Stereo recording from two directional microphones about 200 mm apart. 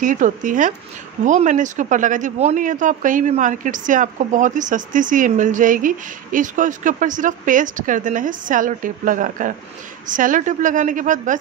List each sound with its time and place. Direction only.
0.0 s speech: 40° right (ahead or behind)